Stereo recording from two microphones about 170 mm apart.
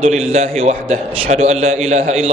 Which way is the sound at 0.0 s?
40° right (ahead or behind).